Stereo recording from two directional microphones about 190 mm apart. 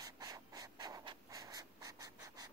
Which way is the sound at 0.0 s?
20° right (ahead or behind).